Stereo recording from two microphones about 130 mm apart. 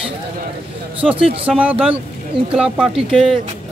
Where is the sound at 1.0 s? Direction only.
10° right (ahead or behind).